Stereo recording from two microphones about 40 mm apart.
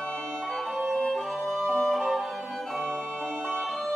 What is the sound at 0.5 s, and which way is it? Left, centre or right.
Organ, centre.